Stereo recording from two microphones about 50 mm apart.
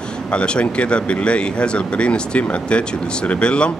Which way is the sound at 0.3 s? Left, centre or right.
Left.